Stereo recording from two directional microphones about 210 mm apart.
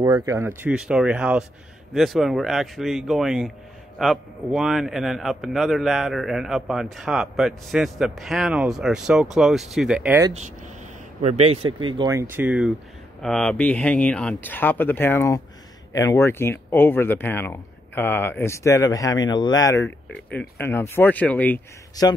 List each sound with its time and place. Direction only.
0.0 s a man's voice: 15° right (ahead or behind)
11.1 s speech: 30° right (ahead or behind); by 21.5 s 5° left (ahead or behind)
22.0 s speech: 20° left (ahead or behind)